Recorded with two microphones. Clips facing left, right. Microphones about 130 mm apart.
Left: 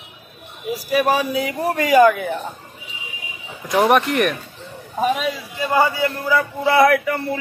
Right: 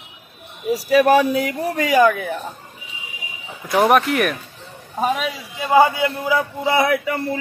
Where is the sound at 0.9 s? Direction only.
65° right (ahead or behind).